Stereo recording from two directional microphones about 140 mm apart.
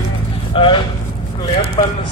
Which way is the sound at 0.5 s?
35° left (ahead or behind).